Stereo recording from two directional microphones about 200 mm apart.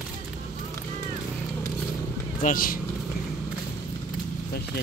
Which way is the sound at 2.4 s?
45° left (ahead or behind).